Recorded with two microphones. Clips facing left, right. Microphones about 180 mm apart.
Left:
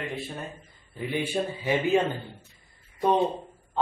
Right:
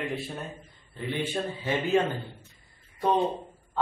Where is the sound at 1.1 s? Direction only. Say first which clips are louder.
Left 2 dB; 10° left (ahead or behind).